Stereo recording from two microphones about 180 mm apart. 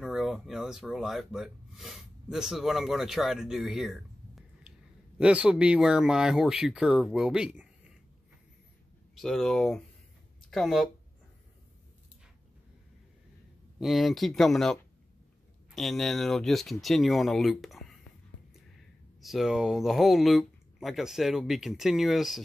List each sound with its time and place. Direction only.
0.0 s speech: centre (ahead or behind)
9.1 s speech: centre (ahead or behind)
13.7 s speech: centre (ahead or behind)
19.2 s speech: centre (ahead or behind)